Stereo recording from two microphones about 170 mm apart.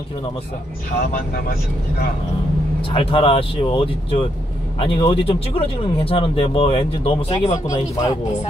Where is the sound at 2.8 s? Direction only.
30° left (ahead or behind).